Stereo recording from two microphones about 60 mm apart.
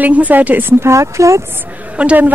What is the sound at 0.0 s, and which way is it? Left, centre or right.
Speech, right.